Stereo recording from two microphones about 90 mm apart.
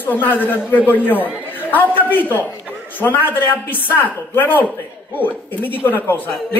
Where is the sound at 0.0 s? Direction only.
20° left (ahead or behind).